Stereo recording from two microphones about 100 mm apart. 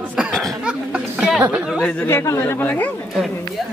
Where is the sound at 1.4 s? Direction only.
15° right (ahead or behind).